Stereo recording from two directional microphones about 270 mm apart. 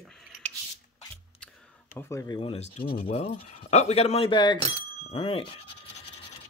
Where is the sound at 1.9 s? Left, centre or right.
Centre.